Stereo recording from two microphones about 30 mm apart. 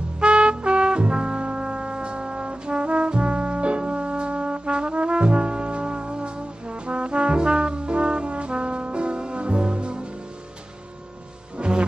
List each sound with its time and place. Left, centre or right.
0.2 s trumpet: right
11.5 s music: right